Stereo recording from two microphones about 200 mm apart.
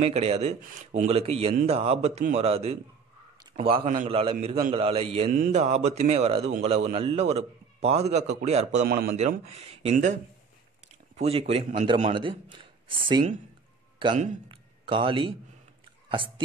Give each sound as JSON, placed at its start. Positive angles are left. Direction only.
{"t": 0.0, "sound": "a man's voice", "side_deg": -30}
{"t": 8.8, "sound": "a man's voice", "side_deg": -50}
{"t": 9.6, "sound": "a man's voice", "side_deg": -30}
{"t": 11.1, "sound": "a man's voice", "side_deg": -30}
{"t": 14.1, "sound": "a man's voice", "side_deg": -40}
{"t": 14.5, "sound": "a sound", "side_deg": -25}